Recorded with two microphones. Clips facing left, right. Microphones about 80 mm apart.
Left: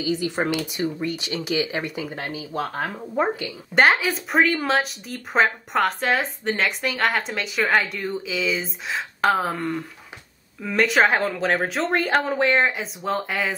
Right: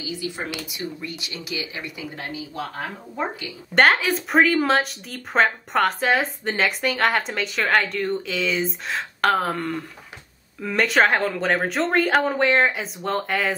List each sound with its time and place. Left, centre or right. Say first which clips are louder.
0.7 s speech: left 6 dB; left
3.7 s speech: right 1 dB; centre